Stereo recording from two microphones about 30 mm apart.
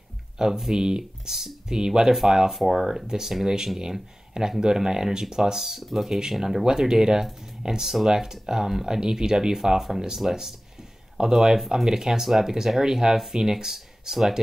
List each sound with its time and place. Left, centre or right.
0.4 s speech: centre
1.3 s speech: centre
3.1 s speech: centre
5.8 s speech: centre
6.0 s speech: centre